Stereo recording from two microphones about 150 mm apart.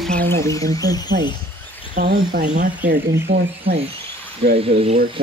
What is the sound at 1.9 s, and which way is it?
Speech, 80° right.